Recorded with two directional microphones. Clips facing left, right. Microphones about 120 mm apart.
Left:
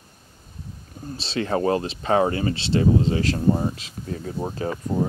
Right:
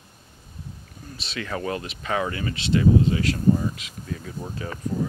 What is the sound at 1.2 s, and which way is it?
Speech, 30° left (ahead or behind).